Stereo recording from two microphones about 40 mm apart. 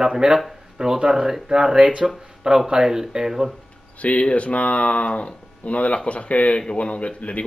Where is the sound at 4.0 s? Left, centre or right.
Left.